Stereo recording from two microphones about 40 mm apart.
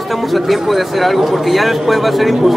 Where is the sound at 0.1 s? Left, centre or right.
Centre.